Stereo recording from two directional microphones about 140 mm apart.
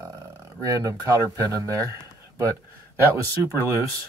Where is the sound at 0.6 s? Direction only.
25° right (ahead or behind).